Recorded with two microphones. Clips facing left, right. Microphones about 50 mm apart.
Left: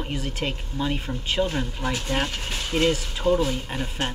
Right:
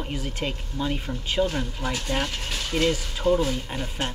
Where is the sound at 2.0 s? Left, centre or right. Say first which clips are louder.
Left 1 dB; left.